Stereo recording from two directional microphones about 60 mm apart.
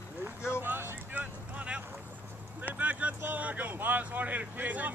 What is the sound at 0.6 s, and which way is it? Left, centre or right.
Vehicle, right.